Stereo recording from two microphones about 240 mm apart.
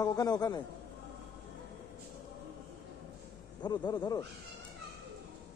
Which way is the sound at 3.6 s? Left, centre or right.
Centre.